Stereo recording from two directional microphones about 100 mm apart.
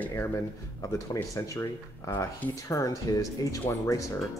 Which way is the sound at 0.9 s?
35° left (ahead or behind).